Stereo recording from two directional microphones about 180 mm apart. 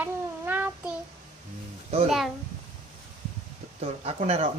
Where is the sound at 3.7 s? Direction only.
35° right (ahead or behind).